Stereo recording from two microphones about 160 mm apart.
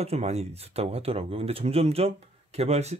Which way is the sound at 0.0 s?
40° right (ahead or behind).